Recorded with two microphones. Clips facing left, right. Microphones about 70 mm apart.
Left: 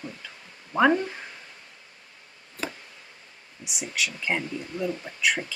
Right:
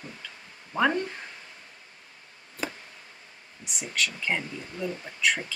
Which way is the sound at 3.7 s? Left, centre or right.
Centre.